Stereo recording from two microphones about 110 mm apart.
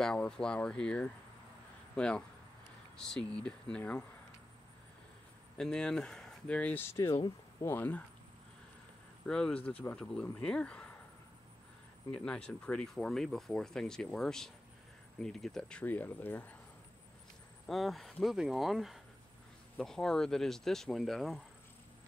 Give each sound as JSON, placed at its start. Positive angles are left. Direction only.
{"t": 0.0, "sound": "speech", "side_deg": 5}
{"t": 5.6, "sound": "speech", "side_deg": 5}
{"t": 9.2, "sound": "speech", "side_deg": 10}
{"t": 12.1, "sound": "speech", "side_deg": 10}
{"t": 15.8, "sound": "speech", "side_deg": 15}
{"t": 17.6, "sound": "speech", "side_deg": 0}